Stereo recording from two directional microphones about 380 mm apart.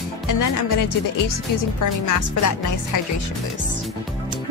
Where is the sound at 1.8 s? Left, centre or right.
Left.